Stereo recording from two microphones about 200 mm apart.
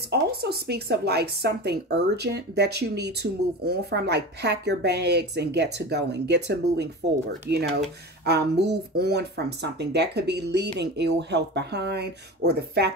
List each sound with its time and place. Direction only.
0.1 s speech: 55° right (ahead or behind)